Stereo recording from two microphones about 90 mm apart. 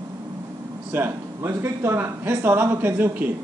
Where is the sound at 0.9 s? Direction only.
25° right (ahead or behind).